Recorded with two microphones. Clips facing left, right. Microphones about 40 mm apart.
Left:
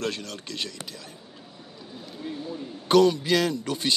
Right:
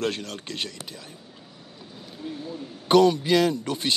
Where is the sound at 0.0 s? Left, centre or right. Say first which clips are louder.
Right 2 dB; right.